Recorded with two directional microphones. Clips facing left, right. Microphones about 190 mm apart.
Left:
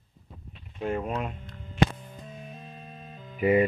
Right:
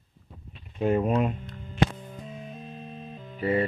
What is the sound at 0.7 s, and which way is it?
Speech, 20° right (ahead or behind).